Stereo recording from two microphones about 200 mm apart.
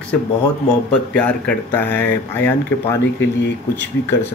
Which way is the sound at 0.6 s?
5° left (ahead or behind).